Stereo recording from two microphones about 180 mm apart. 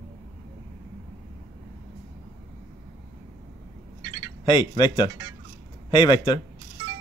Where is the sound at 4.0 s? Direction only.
20° right (ahead or behind).